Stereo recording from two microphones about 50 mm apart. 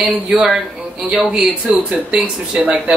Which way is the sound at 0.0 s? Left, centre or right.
Centre.